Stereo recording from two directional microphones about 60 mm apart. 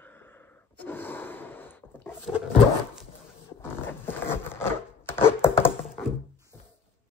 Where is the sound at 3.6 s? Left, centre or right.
Left.